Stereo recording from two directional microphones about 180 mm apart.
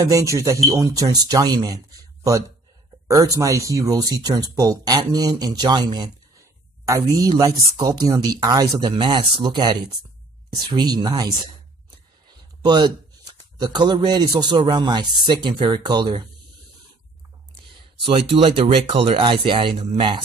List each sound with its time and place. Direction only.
0.0 s speech: 20° right (ahead or behind)
3.1 s speech: 20° right (ahead or behind)
12.6 s a man's voice: 25° right (ahead or behind)
18.0 s speech: 30° right (ahead or behind)